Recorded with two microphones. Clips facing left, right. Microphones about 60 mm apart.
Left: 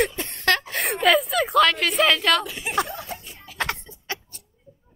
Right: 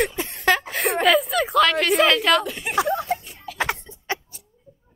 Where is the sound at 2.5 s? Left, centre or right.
Right.